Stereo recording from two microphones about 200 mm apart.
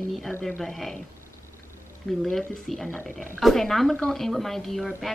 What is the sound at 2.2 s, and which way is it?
Speech, centre (ahead or behind).